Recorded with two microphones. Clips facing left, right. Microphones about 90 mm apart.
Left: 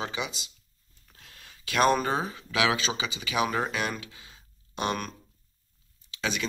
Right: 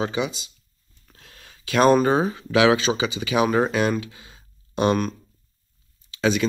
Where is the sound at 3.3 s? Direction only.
35° right (ahead or behind).